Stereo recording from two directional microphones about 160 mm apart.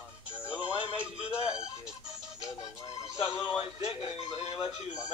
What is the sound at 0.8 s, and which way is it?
Music, 30° right (ahead or behind).